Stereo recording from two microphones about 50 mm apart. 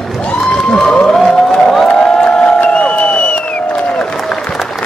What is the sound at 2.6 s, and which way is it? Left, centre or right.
Crowd, left.